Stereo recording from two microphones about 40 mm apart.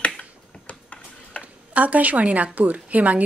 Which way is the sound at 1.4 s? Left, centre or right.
Left.